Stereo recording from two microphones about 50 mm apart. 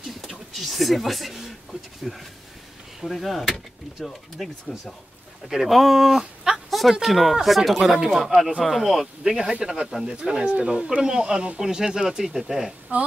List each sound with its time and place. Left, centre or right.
0.3 s a sound: centre
3.0 s speech: centre
5.5 s speech: centre
10.1 s speech: centre